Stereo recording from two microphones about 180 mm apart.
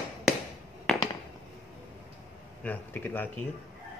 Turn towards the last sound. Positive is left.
turn(degrees=10)  # may be behind; listen again after turning